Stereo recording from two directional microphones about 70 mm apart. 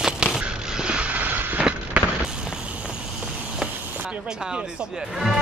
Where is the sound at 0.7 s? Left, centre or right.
Centre.